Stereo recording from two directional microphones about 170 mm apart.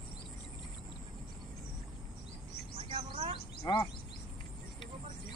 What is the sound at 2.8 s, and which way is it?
Chirp, 30° right (ahead or behind).